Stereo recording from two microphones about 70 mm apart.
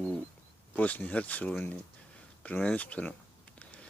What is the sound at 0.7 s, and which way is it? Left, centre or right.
Speech, left.